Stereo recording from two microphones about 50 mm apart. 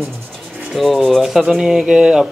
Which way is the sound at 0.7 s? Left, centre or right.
Centre.